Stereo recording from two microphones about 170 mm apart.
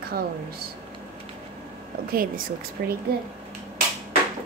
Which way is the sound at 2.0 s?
60° right (ahead or behind).